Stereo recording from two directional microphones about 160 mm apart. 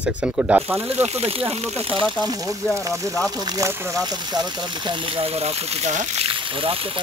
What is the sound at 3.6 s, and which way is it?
Speech, 20° right (ahead or behind).